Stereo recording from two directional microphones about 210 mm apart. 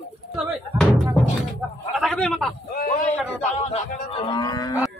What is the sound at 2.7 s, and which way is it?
Speech, 45° left (ahead or behind).